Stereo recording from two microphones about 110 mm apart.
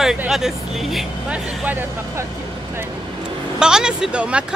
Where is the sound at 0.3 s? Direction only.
5° right (ahead or behind).